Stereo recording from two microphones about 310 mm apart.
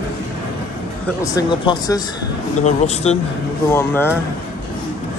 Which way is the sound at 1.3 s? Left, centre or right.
Centre.